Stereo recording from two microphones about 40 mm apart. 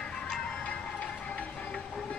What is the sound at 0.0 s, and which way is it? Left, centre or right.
Music, centre.